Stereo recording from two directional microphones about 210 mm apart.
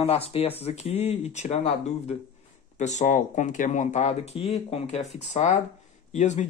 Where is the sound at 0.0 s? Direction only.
30° left (ahead or behind).